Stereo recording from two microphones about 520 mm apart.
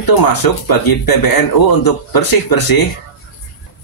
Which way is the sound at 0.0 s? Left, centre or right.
Left.